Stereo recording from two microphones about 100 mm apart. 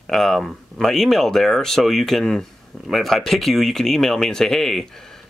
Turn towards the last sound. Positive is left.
turn(degrees=0)  # may be behind; listen again after turning